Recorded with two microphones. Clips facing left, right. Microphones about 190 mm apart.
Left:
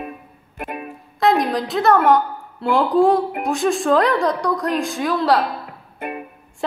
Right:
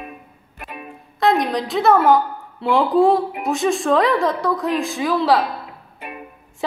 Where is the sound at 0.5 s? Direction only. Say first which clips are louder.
Left 6 dB; 55° left (ahead or behind).